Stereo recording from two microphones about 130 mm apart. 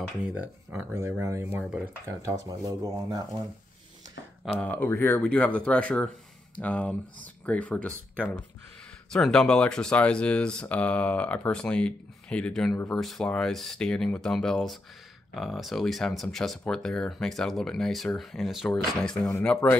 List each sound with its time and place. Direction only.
0.2 s speech: 10° right (ahead or behind); by 2.5 s 25° right (ahead or behind)
4.6 s speech: 15° left (ahead or behind)
18.7 s speech: 10° left (ahead or behind)